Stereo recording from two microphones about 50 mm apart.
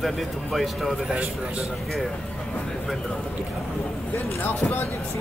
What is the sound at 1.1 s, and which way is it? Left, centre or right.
Speech, right.